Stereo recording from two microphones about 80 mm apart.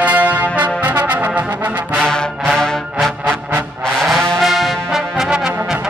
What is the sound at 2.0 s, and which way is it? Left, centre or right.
Music, centre.